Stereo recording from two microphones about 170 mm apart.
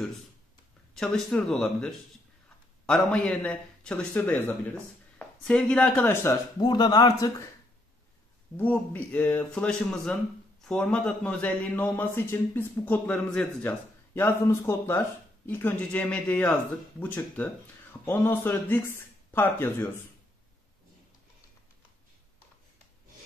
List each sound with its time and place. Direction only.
0.9 s a man's voice: 5° left (ahead or behind)
6.6 s speech: 25° left (ahead or behind)
8.5 s a man's voice: 10° left (ahead or behind)